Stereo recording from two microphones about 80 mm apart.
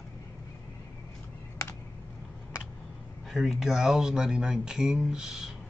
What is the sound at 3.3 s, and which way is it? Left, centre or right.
Speech, centre.